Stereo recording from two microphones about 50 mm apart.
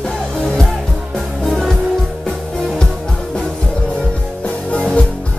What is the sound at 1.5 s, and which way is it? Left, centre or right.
Music, centre.